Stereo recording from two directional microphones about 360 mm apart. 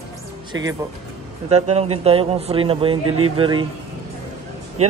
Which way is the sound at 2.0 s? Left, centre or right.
Centre.